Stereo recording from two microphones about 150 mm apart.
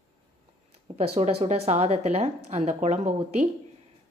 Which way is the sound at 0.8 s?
40° right (ahead or behind).